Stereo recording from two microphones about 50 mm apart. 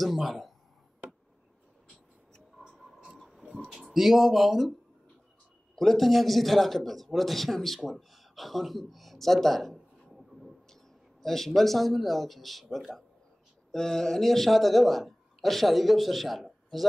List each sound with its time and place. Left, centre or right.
0.0 s a man's voice: centre
3.2 s a sound: centre
3.8 s a man's voice: centre
5.8 s a man's voice: centre